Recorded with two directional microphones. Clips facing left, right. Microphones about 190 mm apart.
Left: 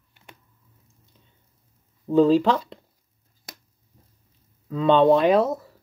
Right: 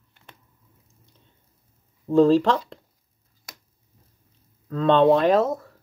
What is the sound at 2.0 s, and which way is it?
Speech, centre (ahead or behind).